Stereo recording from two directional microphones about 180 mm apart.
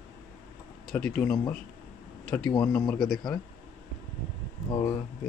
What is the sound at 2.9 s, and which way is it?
Speech, centre (ahead or behind).